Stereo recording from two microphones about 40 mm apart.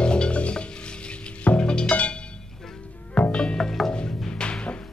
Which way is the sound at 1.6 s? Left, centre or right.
Left.